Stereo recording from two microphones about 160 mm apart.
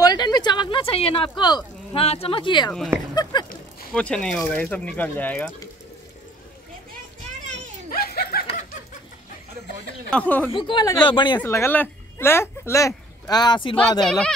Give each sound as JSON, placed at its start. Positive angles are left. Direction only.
{"t": 0.0, "sound": "speech", "side_deg": 25}
{"t": 3.2, "sound": "a sound", "side_deg": 25}
{"t": 3.9, "sound": "speech", "side_deg": 5}
{"t": 7.9, "sound": "snicker", "side_deg": 70}
{"t": 10.0, "sound": "speech", "side_deg": 10}
{"t": 10.5, "sound": "speech", "side_deg": 30}
{"t": 11.4, "sound": "speech", "side_deg": 15}
{"t": 14.0, "sound": "speech", "side_deg": 5}